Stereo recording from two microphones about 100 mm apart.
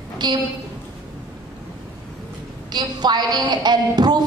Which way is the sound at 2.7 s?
45° right (ahead or behind).